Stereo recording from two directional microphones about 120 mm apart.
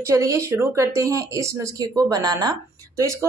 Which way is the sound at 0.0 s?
25° right (ahead or behind).